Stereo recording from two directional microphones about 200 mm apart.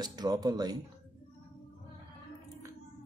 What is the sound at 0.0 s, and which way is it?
Speech, 20° right (ahead or behind).